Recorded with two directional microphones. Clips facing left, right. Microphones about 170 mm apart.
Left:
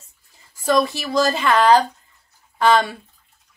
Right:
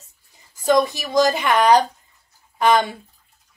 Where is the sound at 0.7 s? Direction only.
20° right (ahead or behind).